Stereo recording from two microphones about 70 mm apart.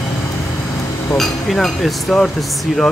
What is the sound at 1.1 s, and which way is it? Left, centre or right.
Speech, centre.